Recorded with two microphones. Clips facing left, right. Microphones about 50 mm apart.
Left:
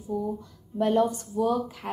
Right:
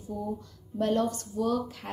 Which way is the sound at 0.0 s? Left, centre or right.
Centre.